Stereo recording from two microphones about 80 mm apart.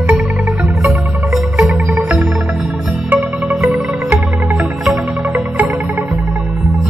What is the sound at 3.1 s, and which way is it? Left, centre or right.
Music, right.